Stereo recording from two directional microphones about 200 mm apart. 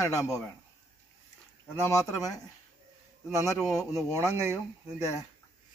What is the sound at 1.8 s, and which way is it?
Speech, 15° left (ahead or behind).